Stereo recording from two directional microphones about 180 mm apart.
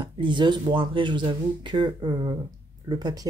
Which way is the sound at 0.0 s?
25° right (ahead or behind).